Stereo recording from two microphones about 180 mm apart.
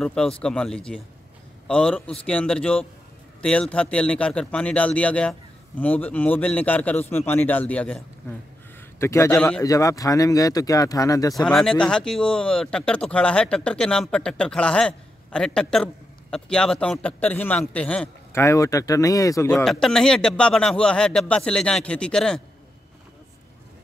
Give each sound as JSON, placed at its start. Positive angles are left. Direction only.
{"t": 0.0, "sound": "a man's voice", "side_deg": 5}
{"t": 11.3, "sound": "speech", "side_deg": 0}
{"t": 19.5, "sound": "speech", "side_deg": 0}